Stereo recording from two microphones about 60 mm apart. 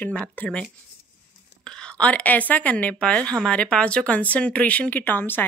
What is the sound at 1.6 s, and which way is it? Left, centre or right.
A woman's voice, centre.